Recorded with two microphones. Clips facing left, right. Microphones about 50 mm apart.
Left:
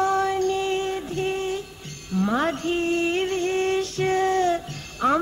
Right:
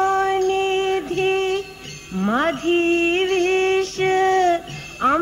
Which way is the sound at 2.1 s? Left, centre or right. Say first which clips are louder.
Right 3 dB; right.